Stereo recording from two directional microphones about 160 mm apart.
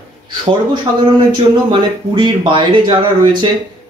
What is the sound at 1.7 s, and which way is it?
Speech, 30° right (ahead or behind).